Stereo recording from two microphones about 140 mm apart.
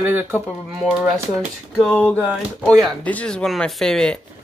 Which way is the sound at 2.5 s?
Centre (ahead or behind).